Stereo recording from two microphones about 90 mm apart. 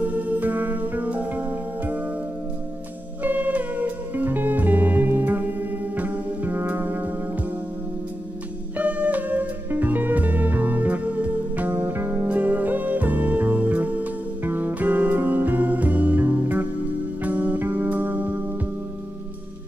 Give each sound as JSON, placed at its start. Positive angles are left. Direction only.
{"t": 0.0, "sound": "music", "side_deg": -15}
{"t": 3.2, "sound": "music", "side_deg": -15}
{"t": 8.7, "sound": "music", "side_deg": -15}